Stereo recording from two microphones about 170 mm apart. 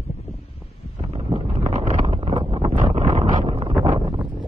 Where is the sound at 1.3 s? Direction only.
35° right (ahead or behind).